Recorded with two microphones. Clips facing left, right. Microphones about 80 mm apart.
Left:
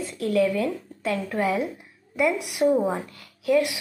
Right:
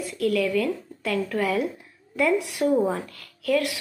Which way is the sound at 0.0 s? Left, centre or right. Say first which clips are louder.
Left 1 dB; left.